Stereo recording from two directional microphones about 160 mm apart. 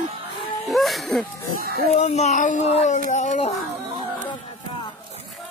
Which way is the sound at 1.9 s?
45° left (ahead or behind).